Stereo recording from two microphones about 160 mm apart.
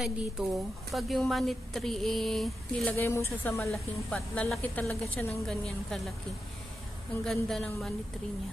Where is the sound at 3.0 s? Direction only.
15° left (ahead or behind).